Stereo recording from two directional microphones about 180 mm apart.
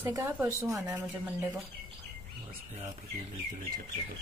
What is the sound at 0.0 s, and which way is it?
Speech, 15° right (ahead or behind).